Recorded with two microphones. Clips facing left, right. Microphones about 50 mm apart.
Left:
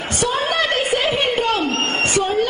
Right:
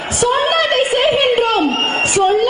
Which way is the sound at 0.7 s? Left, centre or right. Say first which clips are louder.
Right 5 dB; right.